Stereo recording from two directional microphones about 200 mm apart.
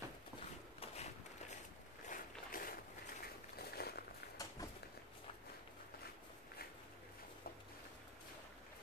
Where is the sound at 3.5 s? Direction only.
50° left (ahead or behind).